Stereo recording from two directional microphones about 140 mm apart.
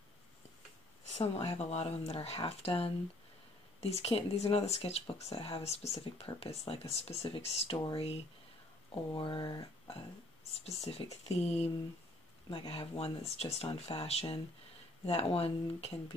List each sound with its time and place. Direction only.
1.1 s speech: 50° left (ahead or behind); by 9.7 s 30° left (ahead or behind)
10.6 s speech: 45° left (ahead or behind)